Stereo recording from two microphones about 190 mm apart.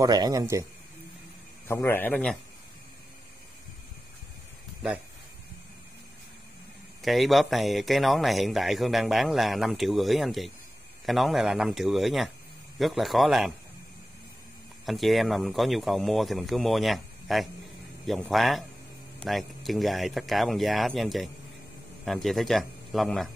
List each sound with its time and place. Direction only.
0.0 s a man's voice: 20° right (ahead or behind)
1.7 s a man's voice: 10° left (ahead or behind)
7.0 s speech: centre (ahead or behind)
14.9 s speech: centre (ahead or behind)